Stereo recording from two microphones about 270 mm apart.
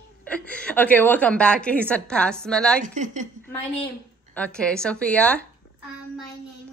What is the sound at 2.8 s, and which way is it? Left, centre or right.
Speech, right.